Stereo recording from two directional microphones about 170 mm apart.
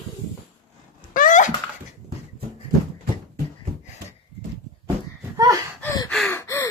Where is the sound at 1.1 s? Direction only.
50° left (ahead or behind).